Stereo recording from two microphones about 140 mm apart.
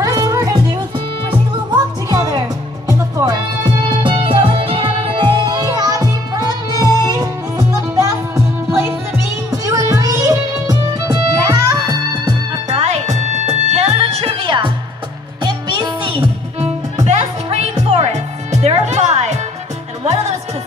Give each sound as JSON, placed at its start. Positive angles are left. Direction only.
{"t": 0.0, "sound": "music", "side_deg": -25}
{"t": 3.9, "sound": "music", "side_deg": -35}
{"t": 12.6, "sound": "music", "side_deg": -50}
{"t": 17.0, "sound": "music", "side_deg": -55}